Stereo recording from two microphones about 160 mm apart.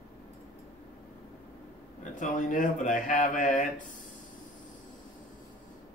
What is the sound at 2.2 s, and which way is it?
Speech, 55° left (ahead or behind).